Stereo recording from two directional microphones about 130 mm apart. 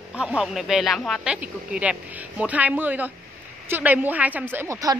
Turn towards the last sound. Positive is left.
turn(degrees=-25)  # may be behind; listen again after turning